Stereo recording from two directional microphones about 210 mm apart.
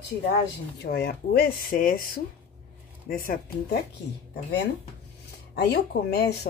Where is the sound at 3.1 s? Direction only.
45° left (ahead or behind).